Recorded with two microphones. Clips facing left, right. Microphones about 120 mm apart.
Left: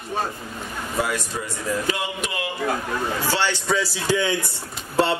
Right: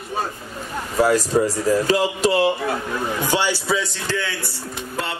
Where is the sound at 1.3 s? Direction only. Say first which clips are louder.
Right 9 dB; 35° right (ahead or behind).